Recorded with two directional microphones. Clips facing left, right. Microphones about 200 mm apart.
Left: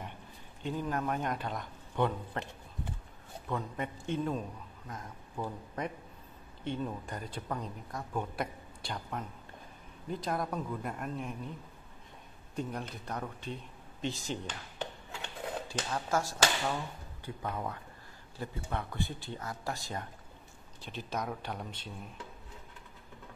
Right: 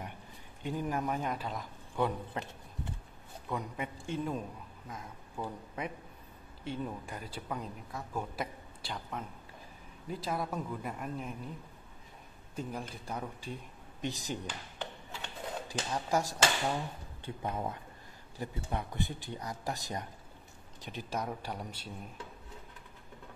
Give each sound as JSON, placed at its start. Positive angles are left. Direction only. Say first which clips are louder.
{"t": 0.7, "sound": "a man's voice", "louder": "even", "side_deg": -10}
{"t": 3.5, "sound": "a man's voice", "louder": "left 1 dB", "side_deg": -10}
{"t": 12.5, "sound": "a man's voice", "louder": "left 2 dB", "side_deg": -5}
{"t": 15.9, "sound": "a man's voice", "louder": "right 1 dB", "side_deg": -15}